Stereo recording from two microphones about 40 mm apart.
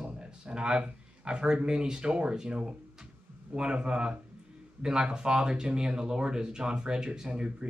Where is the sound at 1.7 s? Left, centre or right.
Centre.